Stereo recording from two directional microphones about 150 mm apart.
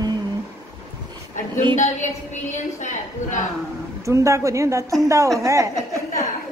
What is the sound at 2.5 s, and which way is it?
Speech, 55° left (ahead or behind).